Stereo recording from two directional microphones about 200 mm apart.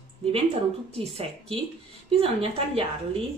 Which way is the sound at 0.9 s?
30° right (ahead or behind).